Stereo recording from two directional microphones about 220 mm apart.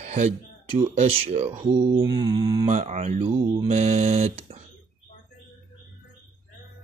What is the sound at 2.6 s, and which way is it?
Mantra, 30° right (ahead or behind).